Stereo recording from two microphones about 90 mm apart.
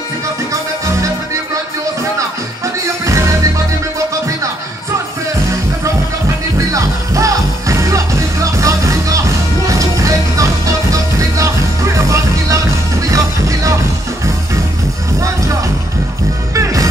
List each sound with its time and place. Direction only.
2.1 s music: 35° right (ahead or behind)
6.7 s music: 35° right (ahead or behind)
16.5 s music: 35° right (ahead or behind)